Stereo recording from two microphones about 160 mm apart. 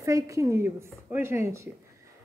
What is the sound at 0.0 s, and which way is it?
A woman's voice, 20° right (ahead or behind).